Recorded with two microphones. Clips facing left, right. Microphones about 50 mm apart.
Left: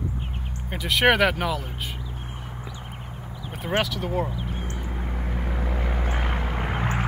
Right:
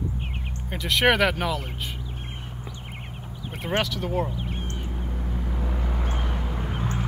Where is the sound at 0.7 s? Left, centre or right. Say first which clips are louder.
Left 1 dB; centre.